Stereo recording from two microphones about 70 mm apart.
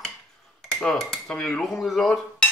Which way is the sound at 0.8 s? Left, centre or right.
Centre.